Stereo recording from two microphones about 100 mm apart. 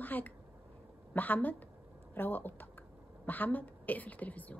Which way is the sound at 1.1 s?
15° left (ahead or behind).